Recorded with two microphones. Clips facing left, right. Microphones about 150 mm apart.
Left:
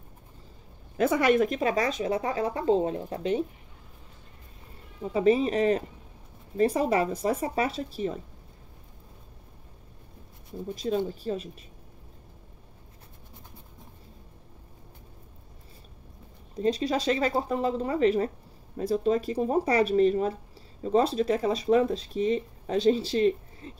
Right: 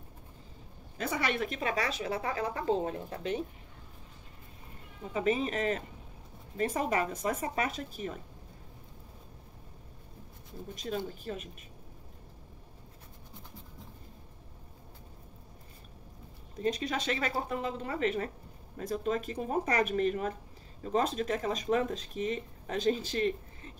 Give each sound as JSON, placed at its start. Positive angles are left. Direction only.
{"t": 0.9, "sound": "speech", "side_deg": 50}
{"t": 5.1, "sound": "speech", "side_deg": 35}
{"t": 10.7, "sound": "speech", "side_deg": 35}
{"t": 16.5, "sound": "speech", "side_deg": 35}